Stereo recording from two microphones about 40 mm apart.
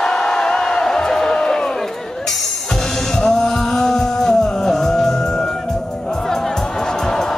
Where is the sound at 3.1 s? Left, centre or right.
Centre.